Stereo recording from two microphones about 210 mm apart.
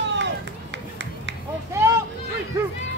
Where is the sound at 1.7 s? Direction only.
10° right (ahead or behind).